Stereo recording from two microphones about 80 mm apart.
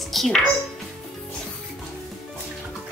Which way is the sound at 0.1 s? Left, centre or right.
Centre.